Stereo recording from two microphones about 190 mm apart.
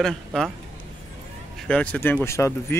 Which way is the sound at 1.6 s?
5° left (ahead or behind).